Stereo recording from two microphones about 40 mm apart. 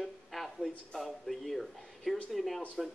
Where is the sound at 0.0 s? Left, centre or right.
Centre.